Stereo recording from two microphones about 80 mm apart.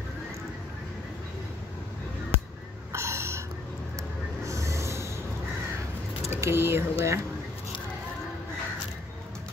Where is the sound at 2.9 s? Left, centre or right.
Right.